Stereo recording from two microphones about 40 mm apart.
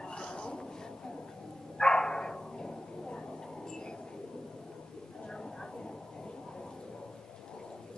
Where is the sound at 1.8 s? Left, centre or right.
Centre.